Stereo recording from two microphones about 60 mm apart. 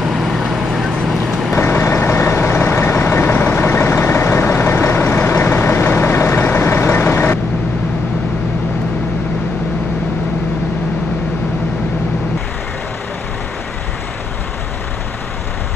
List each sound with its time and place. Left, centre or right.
0.0 s vehicle: centre
1.6 s vehicle: left